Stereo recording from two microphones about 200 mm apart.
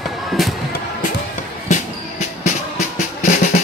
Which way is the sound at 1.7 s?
35° left (ahead or behind).